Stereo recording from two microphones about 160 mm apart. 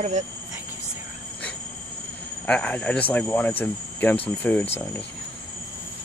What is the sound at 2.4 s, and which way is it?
Speech, 10° left (ahead or behind).